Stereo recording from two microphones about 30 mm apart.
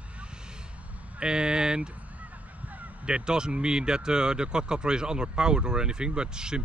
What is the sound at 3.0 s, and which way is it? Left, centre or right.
Speech, right.